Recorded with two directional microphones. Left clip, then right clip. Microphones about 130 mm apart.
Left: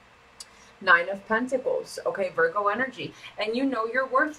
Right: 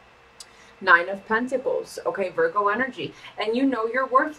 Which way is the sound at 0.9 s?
25° right (ahead or behind).